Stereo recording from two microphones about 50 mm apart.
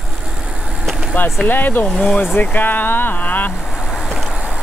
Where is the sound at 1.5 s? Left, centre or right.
Left.